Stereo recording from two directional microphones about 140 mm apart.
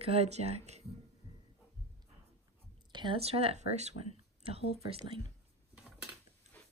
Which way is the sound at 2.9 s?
35° right (ahead or behind).